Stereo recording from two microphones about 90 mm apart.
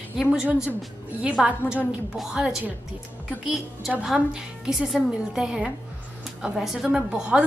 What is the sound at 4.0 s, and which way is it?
A woman's voice, 5° right (ahead or behind).